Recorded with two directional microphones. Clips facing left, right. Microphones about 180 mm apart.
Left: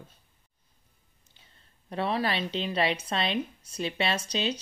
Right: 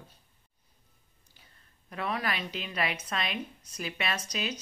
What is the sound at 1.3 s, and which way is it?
A woman's voice, 30° left (ahead or behind).